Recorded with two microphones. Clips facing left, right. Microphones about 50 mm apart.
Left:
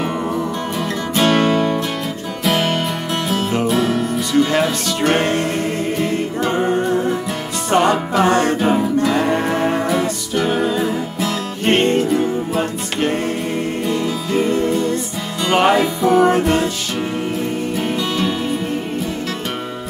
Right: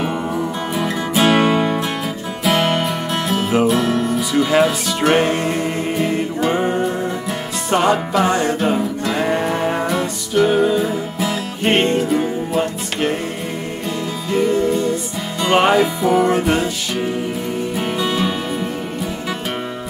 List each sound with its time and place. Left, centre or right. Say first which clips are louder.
0.7 s music: right 2 dB; centre
7.7 s music: left 1 dB; centre
8.3 s music: left 2 dB; left
8.5 s music: left 3 dB; centre
17.7 s music: right 2 dB; centre